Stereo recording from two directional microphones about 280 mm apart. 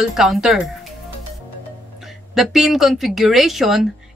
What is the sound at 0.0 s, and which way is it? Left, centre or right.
Speech, centre.